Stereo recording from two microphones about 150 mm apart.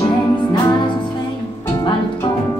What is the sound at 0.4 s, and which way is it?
Music, 30° left (ahead or behind).